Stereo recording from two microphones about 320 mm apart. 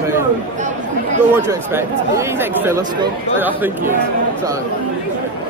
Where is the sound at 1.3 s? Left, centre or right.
Centre.